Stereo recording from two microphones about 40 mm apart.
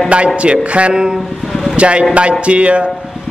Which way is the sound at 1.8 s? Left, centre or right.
Right.